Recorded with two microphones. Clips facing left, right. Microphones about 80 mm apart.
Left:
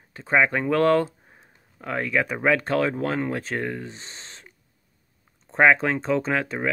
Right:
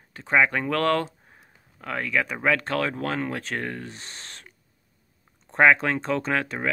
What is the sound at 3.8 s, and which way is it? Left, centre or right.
Speech, left.